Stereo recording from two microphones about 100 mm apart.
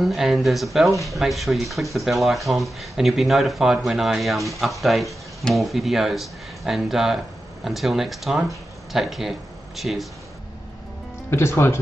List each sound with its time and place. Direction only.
0.0 s speech: centre (ahead or behind)
11.2 s speech: 25° left (ahead or behind)